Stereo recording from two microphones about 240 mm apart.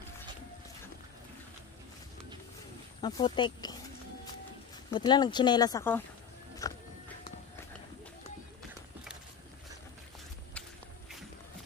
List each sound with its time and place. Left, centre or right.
3.0 s speech: centre
4.9 s speech: centre
6.6 s a sound: centre